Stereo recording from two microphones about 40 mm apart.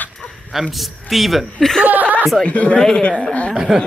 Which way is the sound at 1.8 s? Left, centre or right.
Right.